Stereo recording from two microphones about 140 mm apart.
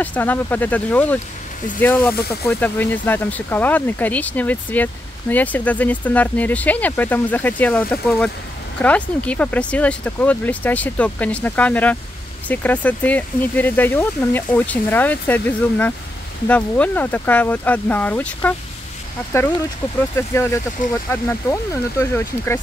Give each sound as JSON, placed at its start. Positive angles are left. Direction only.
{"t": 0.0, "sound": "speech", "side_deg": 10}
{"t": 20.2, "sound": "speech", "side_deg": 20}